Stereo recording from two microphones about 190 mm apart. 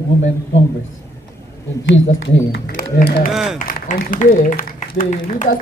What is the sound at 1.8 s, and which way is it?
Speech, 90° left.